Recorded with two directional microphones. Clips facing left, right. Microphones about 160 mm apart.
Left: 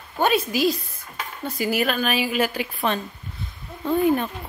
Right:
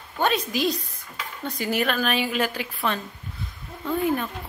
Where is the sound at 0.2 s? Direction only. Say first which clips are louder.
Left 3 dB; 5° left (ahead or behind).